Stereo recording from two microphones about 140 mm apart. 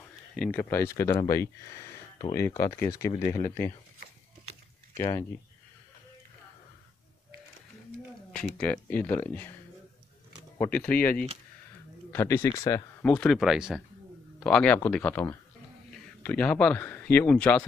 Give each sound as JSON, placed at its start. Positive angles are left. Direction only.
{"t": 0.4, "sound": "speech", "side_deg": 10}
{"t": 8.3, "sound": "speech", "side_deg": 10}
{"t": 10.6, "sound": "speech", "side_deg": 10}
{"t": 13.0, "sound": "speech", "side_deg": 5}
{"t": 14.4, "sound": "speech", "side_deg": 10}